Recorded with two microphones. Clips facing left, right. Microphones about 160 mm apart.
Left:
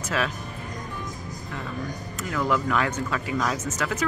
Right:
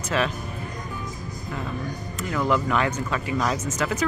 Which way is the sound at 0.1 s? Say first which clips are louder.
Right 3 dB; centre (ahead or behind).